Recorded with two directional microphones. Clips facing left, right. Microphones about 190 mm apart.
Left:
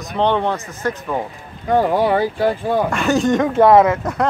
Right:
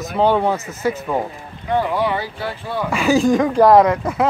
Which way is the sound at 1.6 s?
45° left (ahead or behind).